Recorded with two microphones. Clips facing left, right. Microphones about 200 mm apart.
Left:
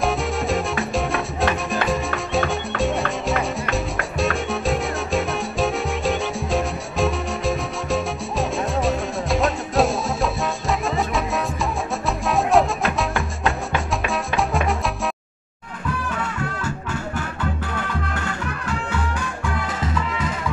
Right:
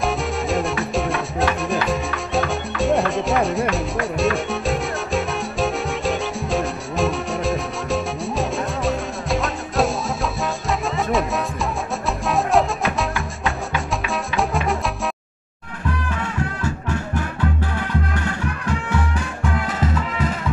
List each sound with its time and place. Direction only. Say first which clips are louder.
0.0 s salsa music: even; centre (ahead or behind)
12.3 s music: left 1 dB; centre (ahead or behind)